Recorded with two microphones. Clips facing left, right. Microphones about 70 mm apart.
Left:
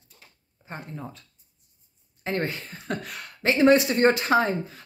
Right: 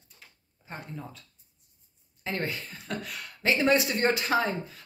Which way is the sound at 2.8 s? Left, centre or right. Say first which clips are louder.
Left 4 dB; left.